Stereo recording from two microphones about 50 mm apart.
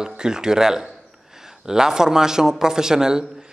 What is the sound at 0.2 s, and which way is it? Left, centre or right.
A man's voice, centre.